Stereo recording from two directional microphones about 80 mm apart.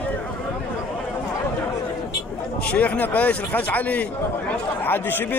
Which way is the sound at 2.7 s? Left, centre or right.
Centre.